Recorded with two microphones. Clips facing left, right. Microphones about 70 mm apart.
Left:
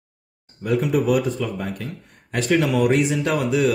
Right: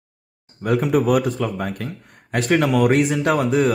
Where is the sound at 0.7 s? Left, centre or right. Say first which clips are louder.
Right 2 dB; right.